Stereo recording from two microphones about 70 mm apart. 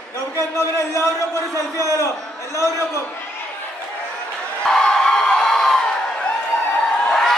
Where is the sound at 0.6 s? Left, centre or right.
Left.